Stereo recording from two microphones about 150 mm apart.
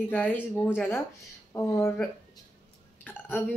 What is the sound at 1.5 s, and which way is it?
Speech, 20° left (ahead or behind).